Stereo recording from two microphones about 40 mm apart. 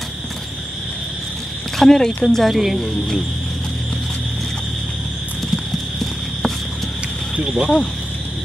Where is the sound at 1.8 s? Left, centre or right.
Centre.